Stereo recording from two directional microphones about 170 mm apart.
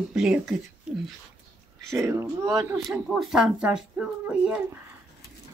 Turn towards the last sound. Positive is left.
turn(degrees=-5)  # may be behind; listen again after turning